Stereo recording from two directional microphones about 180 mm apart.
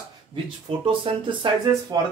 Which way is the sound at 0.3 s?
30° right (ahead or behind).